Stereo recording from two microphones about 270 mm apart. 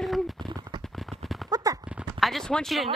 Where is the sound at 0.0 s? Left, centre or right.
Centre.